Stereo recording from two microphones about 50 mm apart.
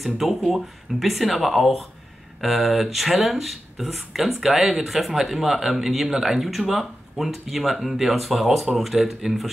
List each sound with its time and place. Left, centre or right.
0.0 s speech: centre